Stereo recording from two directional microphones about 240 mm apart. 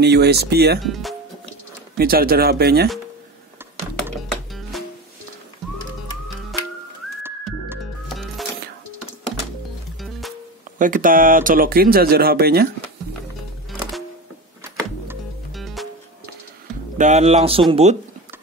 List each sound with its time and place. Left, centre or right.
0.0 s speech: right
0.7 s speech: centre
2.0 s speech: right
4.3 s music: centre
6.5 s music: centre
10.8 s speech: right
14.6 s music: centre
17.0 s speech: right